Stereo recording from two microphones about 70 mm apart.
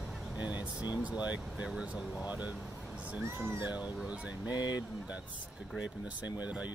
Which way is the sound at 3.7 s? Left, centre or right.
Centre.